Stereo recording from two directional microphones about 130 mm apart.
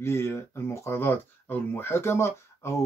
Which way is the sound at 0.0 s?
20° left (ahead or behind).